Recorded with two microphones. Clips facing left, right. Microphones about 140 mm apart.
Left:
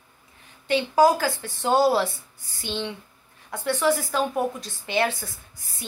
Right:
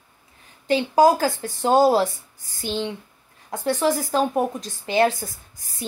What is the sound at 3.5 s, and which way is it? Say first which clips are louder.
A woman's voice: right 1 dB; 40° right (ahead or behind).